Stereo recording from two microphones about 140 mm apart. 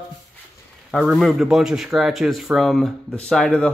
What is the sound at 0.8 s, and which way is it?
A man's voice, 5° left (ahead or behind).